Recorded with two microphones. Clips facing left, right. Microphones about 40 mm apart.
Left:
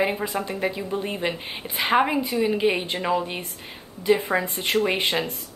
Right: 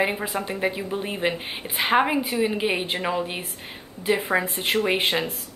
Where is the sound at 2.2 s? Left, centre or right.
Right.